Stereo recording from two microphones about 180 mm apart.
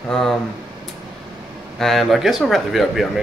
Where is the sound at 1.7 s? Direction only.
Centre (ahead or behind).